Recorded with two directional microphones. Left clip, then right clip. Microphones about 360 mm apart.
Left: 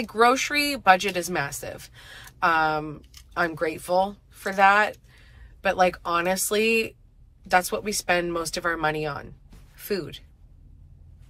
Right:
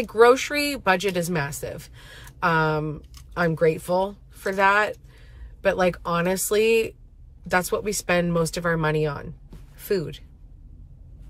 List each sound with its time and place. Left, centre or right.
0.0 s speech: centre